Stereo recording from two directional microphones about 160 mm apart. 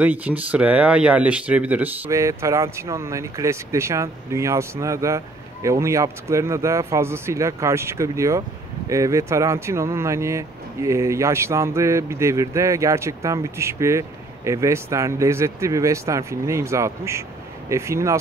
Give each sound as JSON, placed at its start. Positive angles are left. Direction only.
{"t": 0.0, "sound": "speech", "side_deg": -10}